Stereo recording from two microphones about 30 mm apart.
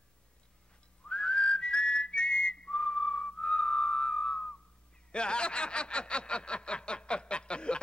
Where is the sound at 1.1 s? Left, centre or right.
Left.